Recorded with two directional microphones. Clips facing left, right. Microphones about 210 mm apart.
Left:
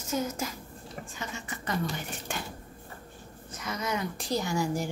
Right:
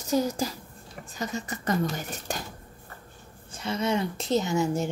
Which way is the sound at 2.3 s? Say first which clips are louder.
Right 3 dB; 40° right (ahead or behind).